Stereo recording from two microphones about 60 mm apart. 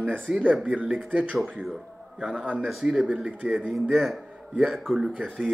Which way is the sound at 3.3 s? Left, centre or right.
Right.